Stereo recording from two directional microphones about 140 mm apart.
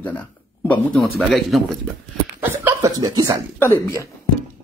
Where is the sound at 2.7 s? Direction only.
25° right (ahead or behind).